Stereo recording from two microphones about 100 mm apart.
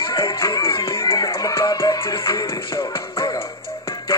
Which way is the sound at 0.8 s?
30° left (ahead or behind).